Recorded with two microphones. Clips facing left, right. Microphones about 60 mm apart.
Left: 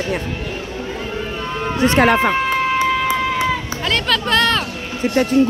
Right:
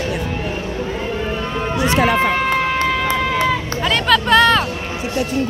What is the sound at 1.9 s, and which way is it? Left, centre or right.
Speech, left.